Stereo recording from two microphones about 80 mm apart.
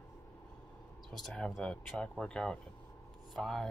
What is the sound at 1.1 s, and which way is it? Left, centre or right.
Speech, centre.